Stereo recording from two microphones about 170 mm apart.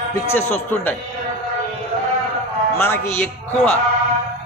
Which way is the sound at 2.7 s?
15° left (ahead or behind).